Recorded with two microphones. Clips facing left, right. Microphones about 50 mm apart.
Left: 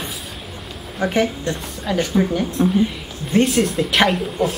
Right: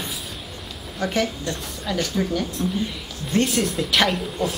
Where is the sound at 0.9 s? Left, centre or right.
Centre.